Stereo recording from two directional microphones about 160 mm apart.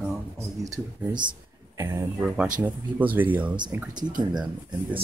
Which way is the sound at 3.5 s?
25° right (ahead or behind).